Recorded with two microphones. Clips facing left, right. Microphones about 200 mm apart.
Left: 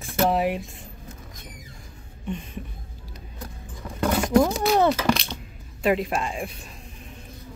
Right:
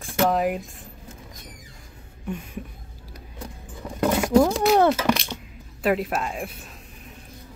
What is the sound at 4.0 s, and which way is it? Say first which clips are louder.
Speech: right 1 dB; 10° right (ahead or behind).